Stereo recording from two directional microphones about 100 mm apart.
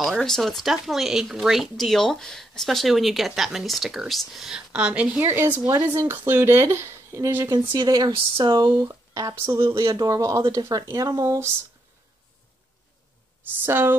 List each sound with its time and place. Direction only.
0.0 s speech: centre (ahead or behind)
5.2 s speech: 20° right (ahead or behind)
7.4 s speech: 45° right (ahead or behind)
8.8 s speech: 35° right (ahead or behind)
13.7 s speech: 25° right (ahead or behind)